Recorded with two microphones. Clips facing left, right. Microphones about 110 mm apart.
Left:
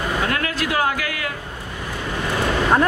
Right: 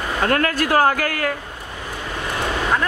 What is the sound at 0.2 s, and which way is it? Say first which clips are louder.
A woman's voice: right 4 dB; 45° right (ahead or behind).